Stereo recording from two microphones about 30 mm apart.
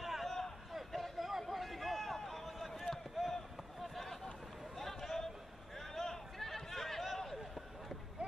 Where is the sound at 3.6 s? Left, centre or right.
Centre.